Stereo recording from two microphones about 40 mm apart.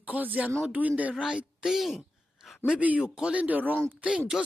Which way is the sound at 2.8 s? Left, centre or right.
Right.